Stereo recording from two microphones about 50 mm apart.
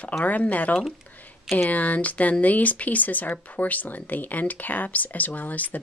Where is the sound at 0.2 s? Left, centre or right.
Left.